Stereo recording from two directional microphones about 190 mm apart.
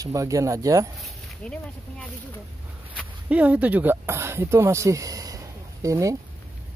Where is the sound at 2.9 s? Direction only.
5° right (ahead or behind).